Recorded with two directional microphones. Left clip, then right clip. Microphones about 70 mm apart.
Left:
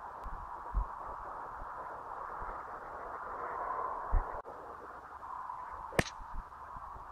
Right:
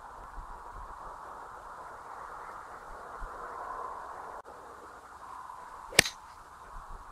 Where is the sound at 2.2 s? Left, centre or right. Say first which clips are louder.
Left 1 dB; centre.